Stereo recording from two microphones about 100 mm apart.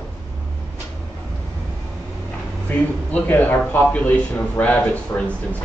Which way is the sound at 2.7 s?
15° left (ahead or behind).